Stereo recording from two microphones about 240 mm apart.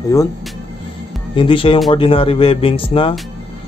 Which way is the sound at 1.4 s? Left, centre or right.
Left.